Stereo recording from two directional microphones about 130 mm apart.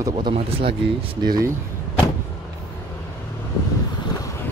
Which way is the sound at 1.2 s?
30° right (ahead or behind).